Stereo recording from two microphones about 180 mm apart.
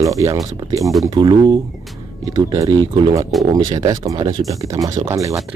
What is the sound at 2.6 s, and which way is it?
Speech, 25° right (ahead or behind).